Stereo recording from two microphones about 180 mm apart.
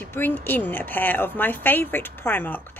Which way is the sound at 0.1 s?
10° left (ahead or behind).